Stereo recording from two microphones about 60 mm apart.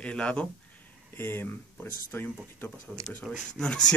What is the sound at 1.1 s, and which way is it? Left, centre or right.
Speech, left.